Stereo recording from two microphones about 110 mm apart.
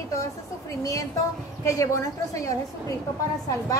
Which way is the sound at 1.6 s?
30° left (ahead or behind).